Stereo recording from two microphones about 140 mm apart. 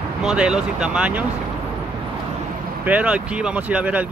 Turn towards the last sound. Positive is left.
turn(degrees=-10)  # may be behind; listen again after turning